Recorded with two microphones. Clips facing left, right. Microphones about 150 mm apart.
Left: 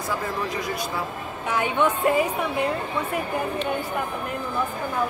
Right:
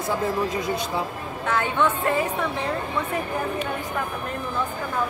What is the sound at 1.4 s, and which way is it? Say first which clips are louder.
Speech: even; 15° left (ahead or behind).